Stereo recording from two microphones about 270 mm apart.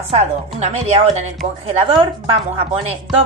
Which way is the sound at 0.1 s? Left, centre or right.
Right.